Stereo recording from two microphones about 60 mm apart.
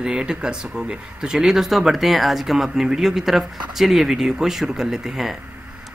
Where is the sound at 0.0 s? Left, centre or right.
Centre.